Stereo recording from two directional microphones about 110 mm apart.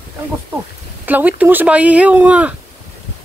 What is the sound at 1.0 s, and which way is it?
Speech, 15° right (ahead or behind).